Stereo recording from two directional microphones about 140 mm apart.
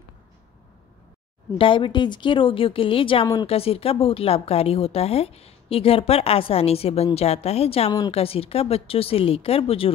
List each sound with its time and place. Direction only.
1.6 s a woman's voice: 35° left (ahead or behind)